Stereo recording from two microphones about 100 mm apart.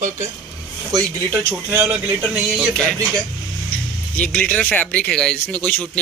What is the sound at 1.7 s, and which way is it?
Speech, 15° right (ahead or behind).